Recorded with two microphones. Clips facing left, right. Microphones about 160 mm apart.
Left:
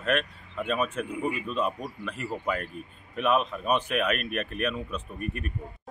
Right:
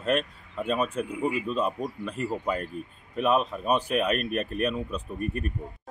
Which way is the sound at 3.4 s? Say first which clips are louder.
Right 1 dB; centre (ahead or behind).